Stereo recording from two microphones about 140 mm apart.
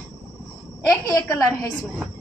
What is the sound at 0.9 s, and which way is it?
Speech, 25° left (ahead or behind).